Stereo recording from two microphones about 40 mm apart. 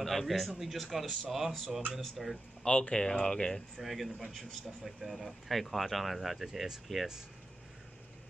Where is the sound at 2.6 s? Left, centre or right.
Left.